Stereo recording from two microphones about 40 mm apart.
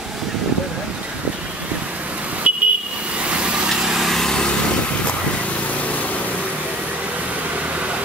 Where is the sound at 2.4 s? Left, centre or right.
Right.